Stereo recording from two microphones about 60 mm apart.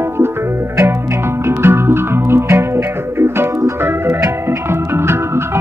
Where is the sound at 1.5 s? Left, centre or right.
Right.